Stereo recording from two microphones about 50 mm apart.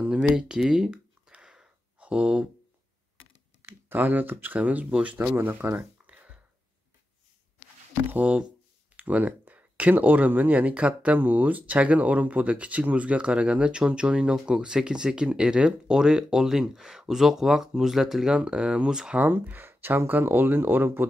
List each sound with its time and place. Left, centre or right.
0.4 s speech: centre
1.3 s a sound: centre
2.0 s speech: right
3.6 s speech: right
5.3 s speech: right
6.0 s a sound: right
8.1 s speech: right
19.1 s speech: right